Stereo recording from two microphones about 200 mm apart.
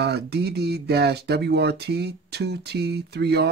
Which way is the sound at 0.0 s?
55° right (ahead or behind).